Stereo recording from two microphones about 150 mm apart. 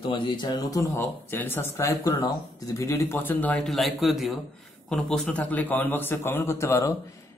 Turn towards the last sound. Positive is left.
turn(degrees=20)  # may be behind; listen again after turning